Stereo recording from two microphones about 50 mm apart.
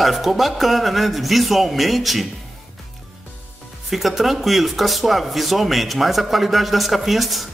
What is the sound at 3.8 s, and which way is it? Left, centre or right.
Speech, centre.